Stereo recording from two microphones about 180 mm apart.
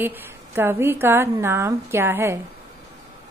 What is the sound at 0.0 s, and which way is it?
A woman's voice, 10° right (ahead or behind).